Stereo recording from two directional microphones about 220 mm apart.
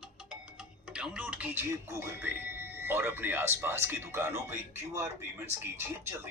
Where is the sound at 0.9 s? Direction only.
5° right (ahead or behind).